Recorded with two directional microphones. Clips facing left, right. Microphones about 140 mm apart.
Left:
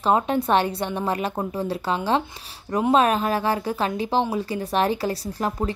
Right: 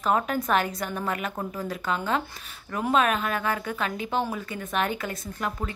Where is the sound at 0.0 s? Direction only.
30° left (ahead or behind).